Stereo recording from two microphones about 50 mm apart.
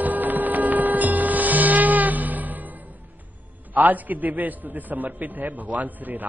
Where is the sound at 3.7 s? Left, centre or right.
Right.